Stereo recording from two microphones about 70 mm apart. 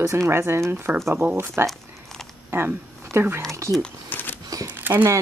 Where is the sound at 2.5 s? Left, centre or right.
Right.